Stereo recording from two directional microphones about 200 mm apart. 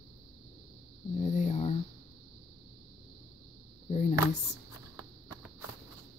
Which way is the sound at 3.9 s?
35° left (ahead or behind).